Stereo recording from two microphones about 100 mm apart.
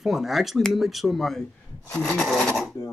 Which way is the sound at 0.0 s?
Centre (ahead or behind).